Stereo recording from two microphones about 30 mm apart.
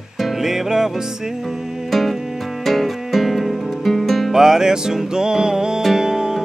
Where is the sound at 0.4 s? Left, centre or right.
Centre.